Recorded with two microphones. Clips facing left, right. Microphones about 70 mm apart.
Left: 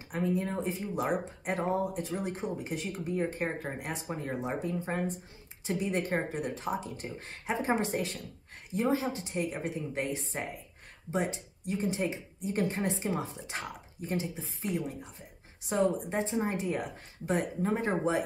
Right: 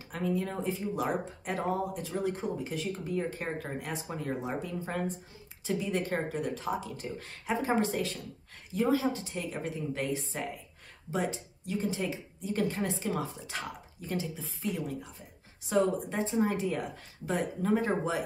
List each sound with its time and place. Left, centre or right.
0.1 s speech: left